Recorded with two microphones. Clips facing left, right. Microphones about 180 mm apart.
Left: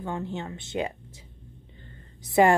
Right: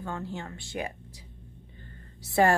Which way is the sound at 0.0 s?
20° left (ahead or behind).